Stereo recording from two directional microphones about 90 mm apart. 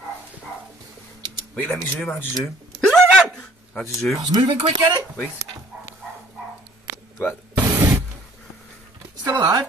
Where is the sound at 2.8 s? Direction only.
5° left (ahead or behind).